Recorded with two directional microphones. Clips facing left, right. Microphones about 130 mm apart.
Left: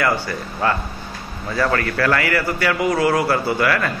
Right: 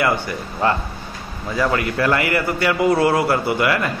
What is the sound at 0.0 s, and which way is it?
A man's voice, 20° right (ahead or behind).